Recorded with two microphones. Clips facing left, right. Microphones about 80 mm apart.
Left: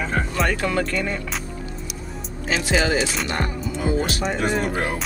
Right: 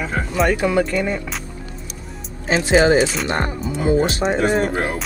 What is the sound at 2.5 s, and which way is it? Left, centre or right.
Speech, right.